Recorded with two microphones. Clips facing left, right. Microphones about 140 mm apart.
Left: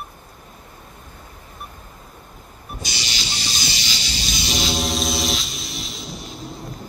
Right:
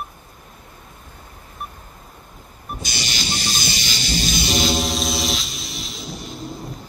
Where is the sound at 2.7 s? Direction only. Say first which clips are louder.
Right 3 dB; 50° right (ahead or behind).